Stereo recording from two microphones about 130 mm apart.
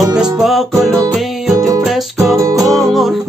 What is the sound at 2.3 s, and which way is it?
Music, 25° right (ahead or behind).